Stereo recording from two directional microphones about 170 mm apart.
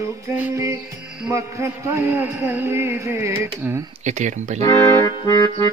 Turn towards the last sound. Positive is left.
turn(degrees=25)  # may be behind; listen again after turning